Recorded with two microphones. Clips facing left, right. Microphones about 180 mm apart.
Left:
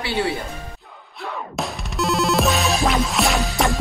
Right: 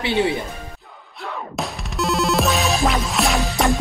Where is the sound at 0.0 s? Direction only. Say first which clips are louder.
Right 4 dB; 20° right (ahead or behind).